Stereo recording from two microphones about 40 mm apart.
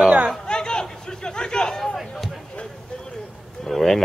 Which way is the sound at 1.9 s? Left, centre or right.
Centre.